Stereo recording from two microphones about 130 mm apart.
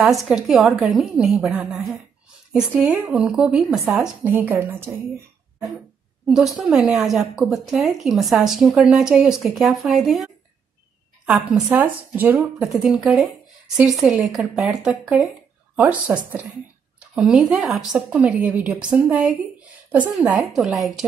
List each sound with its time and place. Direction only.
0.0 s a woman's voice: centre (ahead or behind)
4.2 s speech: 15° right (ahead or behind)
6.2 s a woman's voice: 5° right (ahead or behind)
17.1 s a woman's voice: 5° right (ahead or behind)